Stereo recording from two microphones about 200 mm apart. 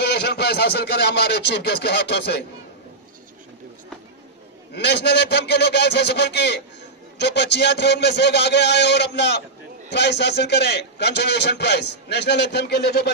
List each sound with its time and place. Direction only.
0.0 s a man's voice: 55° left (ahead or behind)
4.7 s a man's voice: 55° left (ahead or behind)